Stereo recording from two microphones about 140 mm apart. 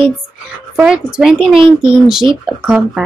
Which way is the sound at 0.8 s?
5° right (ahead or behind).